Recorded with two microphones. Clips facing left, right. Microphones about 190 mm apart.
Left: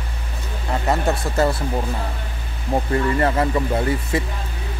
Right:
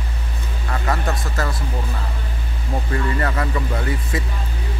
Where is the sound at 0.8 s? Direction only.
25° left (ahead or behind).